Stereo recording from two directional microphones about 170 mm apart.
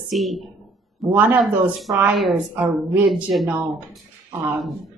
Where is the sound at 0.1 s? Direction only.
Centre (ahead or behind).